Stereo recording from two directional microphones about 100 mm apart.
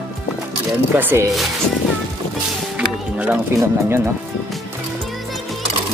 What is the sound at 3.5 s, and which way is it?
Speech, 25° right (ahead or behind).